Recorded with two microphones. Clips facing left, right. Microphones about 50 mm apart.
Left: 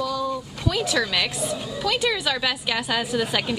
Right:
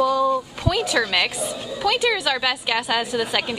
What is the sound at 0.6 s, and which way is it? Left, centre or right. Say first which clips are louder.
A woman's voice: left 1 dB; centre.